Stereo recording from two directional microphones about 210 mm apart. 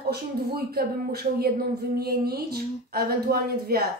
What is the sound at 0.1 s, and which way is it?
Speech, 45° right (ahead or behind).